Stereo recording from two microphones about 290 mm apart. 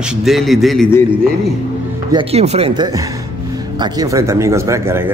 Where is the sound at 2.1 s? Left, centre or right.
Centre.